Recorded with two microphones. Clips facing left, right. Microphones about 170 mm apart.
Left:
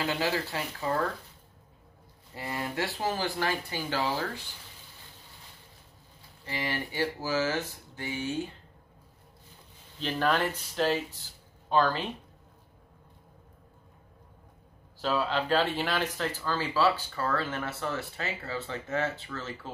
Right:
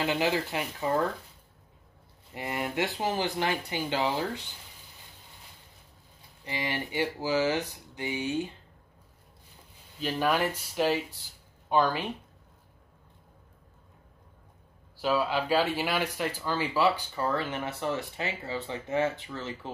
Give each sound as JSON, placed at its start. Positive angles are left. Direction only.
{"t": 0.0, "sound": "speech", "side_deg": -20}
{"t": 2.3, "sound": "speech", "side_deg": -20}
{"t": 6.4, "sound": "speech", "side_deg": -20}
{"t": 9.9, "sound": "speech", "side_deg": -10}
{"t": 15.0, "sound": "speech", "side_deg": -10}